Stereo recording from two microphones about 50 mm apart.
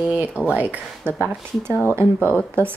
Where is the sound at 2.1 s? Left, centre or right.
Left.